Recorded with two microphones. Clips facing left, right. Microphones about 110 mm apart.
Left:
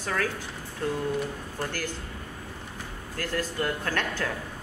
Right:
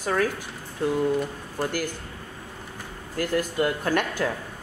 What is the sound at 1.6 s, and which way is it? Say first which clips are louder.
Speech: right 6 dB; 10° right (ahead or behind).